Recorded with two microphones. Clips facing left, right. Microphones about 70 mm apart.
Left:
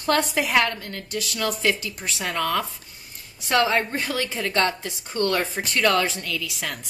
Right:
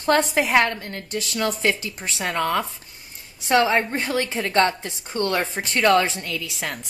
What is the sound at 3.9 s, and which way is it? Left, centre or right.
A woman's voice, right.